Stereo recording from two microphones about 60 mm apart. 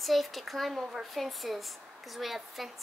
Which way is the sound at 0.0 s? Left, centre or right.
Centre.